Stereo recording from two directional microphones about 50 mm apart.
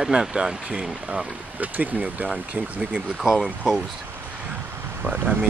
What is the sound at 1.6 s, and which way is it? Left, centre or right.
Speech, right.